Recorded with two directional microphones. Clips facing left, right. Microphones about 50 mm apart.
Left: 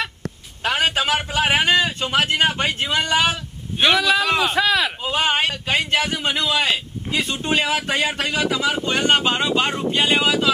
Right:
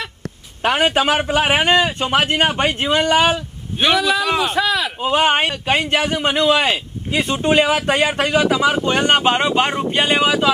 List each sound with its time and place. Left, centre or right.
0.6 s a man's voice: right
3.8 s a man's voice: centre
5.0 s speech: right